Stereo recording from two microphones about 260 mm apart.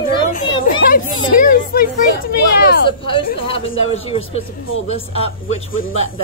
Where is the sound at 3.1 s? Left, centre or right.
Left.